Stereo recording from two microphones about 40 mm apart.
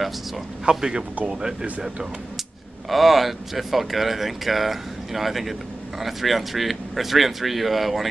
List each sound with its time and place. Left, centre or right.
0.7 s speech: centre
2.9 s speech: centre